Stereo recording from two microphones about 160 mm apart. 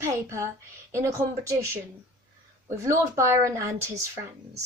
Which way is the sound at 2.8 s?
20° right (ahead or behind).